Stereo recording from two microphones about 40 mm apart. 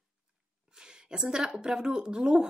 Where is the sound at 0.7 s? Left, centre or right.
Centre.